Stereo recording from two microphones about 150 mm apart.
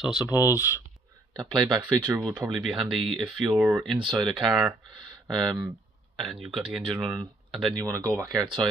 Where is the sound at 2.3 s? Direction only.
5° right (ahead or behind).